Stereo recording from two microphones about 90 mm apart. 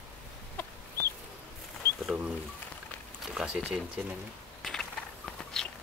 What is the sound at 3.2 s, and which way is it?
Speech, 5° right (ahead or behind).